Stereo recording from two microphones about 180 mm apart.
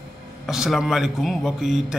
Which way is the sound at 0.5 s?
Centre (ahead or behind).